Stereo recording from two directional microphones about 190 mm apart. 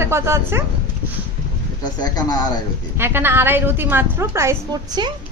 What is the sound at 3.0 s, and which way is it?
A woman's voice, 10° right (ahead or behind).